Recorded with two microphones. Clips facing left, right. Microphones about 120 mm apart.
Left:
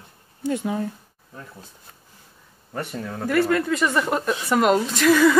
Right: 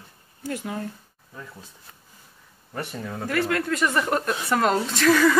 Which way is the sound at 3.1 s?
Centre (ahead or behind).